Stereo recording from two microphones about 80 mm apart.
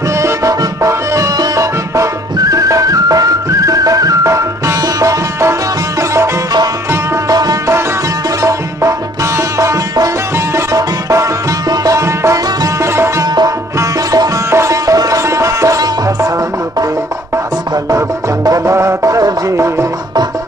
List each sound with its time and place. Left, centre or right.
0.2 s music: right
6.9 s music: right
13.2 s music: right
14.5 s music: right
17.8 s music: right